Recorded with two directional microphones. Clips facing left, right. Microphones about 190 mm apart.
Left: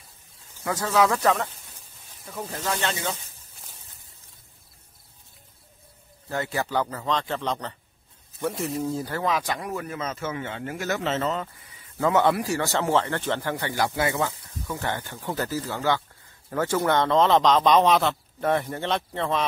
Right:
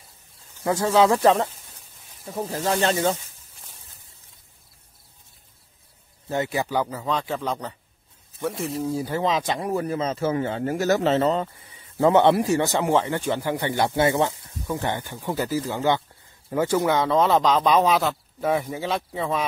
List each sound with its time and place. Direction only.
0.7 s speech: 25° right (ahead or behind)
6.2 s a man's voice: 20° right (ahead or behind); by 9.0 s centre (ahead or behind)
9.0 s speech: 20° right (ahead or behind)